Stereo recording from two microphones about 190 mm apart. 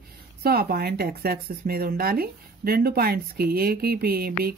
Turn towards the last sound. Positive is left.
turn(degrees=-55)  # may be behind; listen again after turning